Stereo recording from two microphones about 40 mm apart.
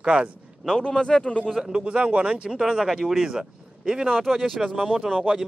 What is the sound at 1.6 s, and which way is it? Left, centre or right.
Speech, right.